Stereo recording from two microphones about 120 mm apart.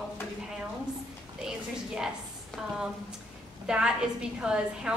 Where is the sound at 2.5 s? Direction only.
5° right (ahead or behind).